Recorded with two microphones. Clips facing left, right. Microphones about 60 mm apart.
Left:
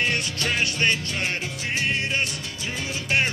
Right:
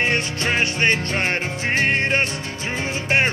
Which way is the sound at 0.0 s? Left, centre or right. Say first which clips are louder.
Right 4 dB; right.